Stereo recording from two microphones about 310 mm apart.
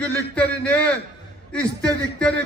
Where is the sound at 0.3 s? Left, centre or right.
Centre.